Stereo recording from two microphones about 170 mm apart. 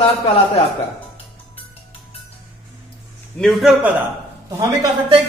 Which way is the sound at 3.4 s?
5° right (ahead or behind).